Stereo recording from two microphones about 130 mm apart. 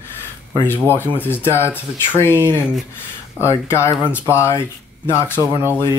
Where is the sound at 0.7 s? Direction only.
15° left (ahead or behind).